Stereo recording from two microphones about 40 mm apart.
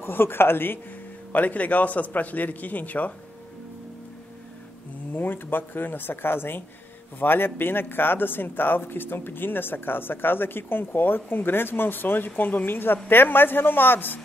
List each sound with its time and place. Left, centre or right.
0.0 s speech: left
1.3 s a man's voice: left
5.1 s speech: left
12.6 s speech: left